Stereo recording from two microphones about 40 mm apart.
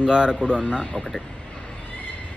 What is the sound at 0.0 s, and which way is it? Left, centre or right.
Speech, right.